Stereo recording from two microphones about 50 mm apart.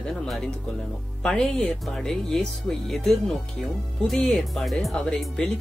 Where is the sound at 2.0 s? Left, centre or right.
Centre.